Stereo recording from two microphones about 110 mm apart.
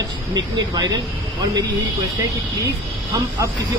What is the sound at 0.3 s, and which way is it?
Speech, 40° right (ahead or behind).